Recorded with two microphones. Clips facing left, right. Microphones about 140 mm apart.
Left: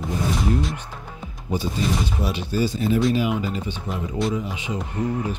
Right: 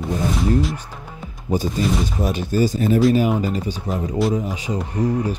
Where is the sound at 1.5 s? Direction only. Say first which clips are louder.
Right 4 dB; 45° right (ahead or behind).